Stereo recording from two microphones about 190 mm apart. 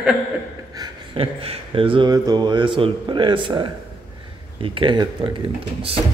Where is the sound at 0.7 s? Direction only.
25° right (ahead or behind).